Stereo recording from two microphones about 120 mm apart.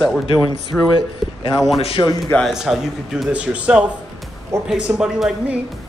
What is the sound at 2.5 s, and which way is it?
A man's voice, 5° right (ahead or behind).